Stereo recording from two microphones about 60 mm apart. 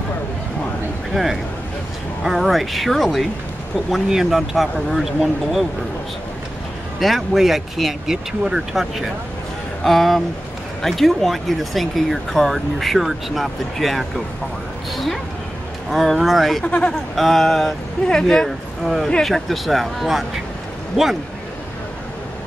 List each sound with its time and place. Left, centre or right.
1.1 s speech: centre
7.0 s speech: centre
15.9 s speech: centre
16.6 s speech: centre
17.1 s speech: centre